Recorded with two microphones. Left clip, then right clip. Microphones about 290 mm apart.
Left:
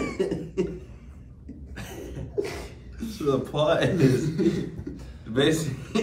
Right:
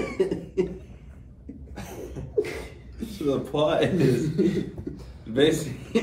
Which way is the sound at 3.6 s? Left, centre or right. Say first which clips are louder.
Right 1 dB; centre.